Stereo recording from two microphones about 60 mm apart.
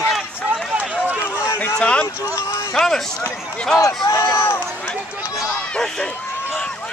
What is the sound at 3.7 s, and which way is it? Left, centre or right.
Speech, left.